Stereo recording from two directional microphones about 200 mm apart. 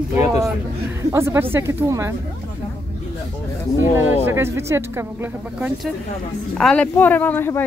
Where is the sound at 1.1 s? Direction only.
10° right (ahead or behind).